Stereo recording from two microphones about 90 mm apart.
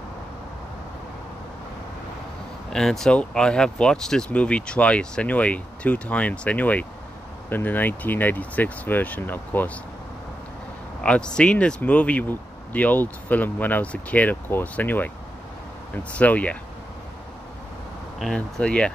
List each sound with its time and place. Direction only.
2.7 s speech: 5° left (ahead or behind); by 9.7 s 20° left (ahead or behind)
11.0 s speech: 10° left (ahead or behind)
18.2 s speech: 10° left (ahead or behind)